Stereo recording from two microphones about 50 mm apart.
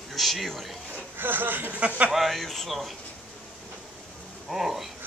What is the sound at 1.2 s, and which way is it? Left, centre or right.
Speech, right.